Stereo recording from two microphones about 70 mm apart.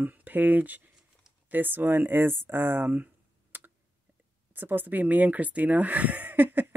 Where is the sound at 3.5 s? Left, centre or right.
Right.